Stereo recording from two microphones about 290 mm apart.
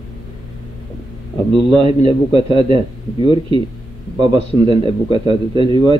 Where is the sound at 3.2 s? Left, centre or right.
Centre.